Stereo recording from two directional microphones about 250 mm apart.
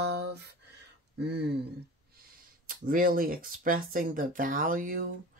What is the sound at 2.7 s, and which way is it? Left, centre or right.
Speech, right.